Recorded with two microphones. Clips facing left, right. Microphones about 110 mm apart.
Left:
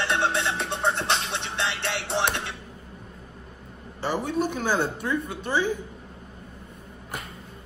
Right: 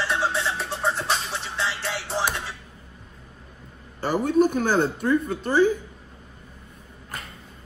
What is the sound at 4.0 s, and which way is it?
Speech, 45° right (ahead or behind).